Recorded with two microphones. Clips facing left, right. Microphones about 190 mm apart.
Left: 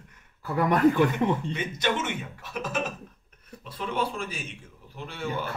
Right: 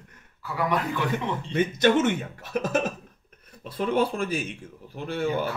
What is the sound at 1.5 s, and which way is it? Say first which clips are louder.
A man's voice: right 8 dB; 45° right (ahead or behind).